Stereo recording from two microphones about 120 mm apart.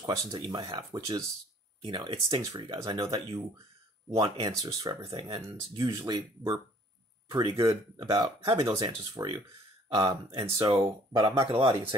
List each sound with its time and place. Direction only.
0.0 s speech: 35° right (ahead or behind)
1.8 s speech: 45° right (ahead or behind)
7.5 s speech: 25° right (ahead or behind)
8.1 s speech: 40° right (ahead or behind)